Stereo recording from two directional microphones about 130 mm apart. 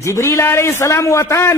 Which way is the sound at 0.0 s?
20° left (ahead or behind).